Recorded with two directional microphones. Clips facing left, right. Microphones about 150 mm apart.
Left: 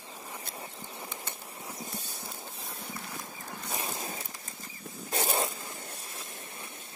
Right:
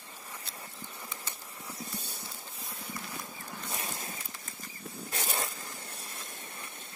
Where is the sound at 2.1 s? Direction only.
30° left (ahead or behind).